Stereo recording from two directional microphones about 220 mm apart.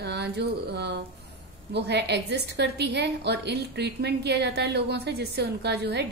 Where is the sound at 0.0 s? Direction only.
50° right (ahead or behind).